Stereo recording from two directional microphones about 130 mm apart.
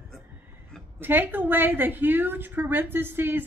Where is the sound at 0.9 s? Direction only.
15° right (ahead or behind).